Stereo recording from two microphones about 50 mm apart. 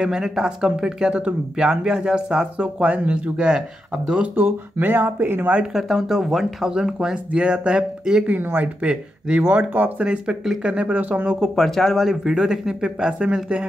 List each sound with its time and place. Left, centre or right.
0.0 s speech: centre
4.4 s speech: right
5.8 s speech: centre; by 9.4 s right
9.5 s speech: right
10.0 s speech: centre
11.0 s speech: right
11.2 s speech: centre
11.5 s speech: centre
12.3 s speech: centre